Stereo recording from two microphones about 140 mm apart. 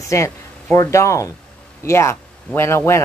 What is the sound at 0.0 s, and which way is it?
A man's voice, 20° left (ahead or behind).